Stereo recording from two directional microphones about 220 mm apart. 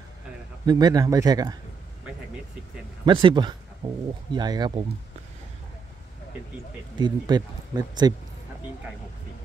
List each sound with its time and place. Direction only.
0.7 s speech: 20° right (ahead or behind)
3.1 s speech: 20° right (ahead or behind)
7.0 s speech: 20° right (ahead or behind)